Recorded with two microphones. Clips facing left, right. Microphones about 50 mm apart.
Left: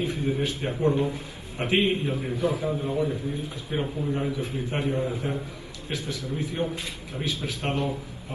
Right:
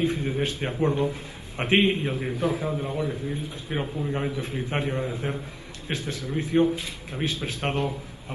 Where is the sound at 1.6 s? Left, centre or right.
Right.